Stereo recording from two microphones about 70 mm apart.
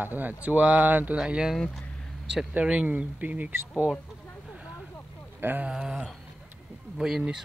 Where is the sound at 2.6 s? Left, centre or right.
Right.